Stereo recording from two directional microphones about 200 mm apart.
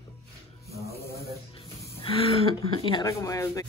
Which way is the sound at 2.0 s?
25° left (ahead or behind).